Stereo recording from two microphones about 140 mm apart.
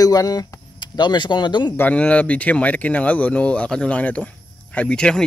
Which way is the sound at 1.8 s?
10° left (ahead or behind).